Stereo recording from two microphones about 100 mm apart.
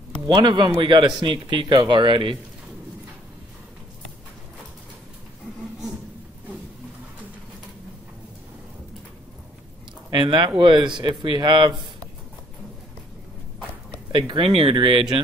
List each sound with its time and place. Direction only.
0.4 s speech: 50° right (ahead or behind)
10.1 s speech: 50° right (ahead or behind)
14.1 s speech: 55° right (ahead or behind)